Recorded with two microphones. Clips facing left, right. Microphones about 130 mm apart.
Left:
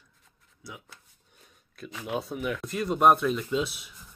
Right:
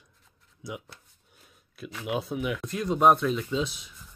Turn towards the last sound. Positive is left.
turn(degrees=5)  # may be behind; listen again after turning